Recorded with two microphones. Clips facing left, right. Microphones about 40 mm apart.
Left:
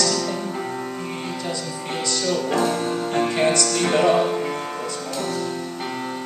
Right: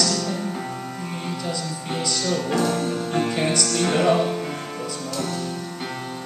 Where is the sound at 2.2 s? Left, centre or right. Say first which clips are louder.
Left 2 dB; centre.